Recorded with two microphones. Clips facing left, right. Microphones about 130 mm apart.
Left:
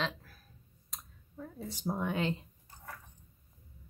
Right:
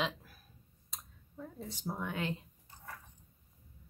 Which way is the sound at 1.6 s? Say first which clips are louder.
Left 5 dB; 15° left (ahead or behind).